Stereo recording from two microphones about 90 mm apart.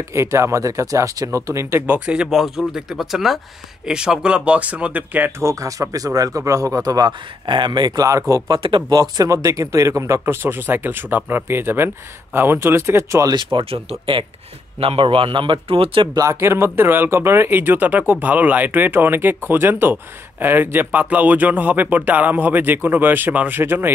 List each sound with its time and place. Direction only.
0.1 s speech: 30° right (ahead or behind)
2.0 s speech: 10° right (ahead or behind)
5.4 s speech: 35° right (ahead or behind)
8.6 s speech: 65° right (ahead or behind)
8.9 s speech: 45° right (ahead or behind)
13.3 s speech: 65° right (ahead or behind); by 14.2 s 80° right
14.8 s a man's voice: 90° right
16.2 s speech: 30° right (ahead or behind)